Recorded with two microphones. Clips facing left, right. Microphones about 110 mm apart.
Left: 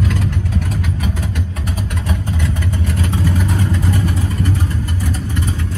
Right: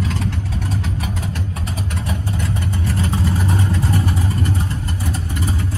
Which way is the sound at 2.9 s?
30° right (ahead or behind).